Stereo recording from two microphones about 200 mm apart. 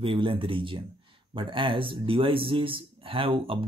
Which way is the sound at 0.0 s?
25° right (ahead or behind).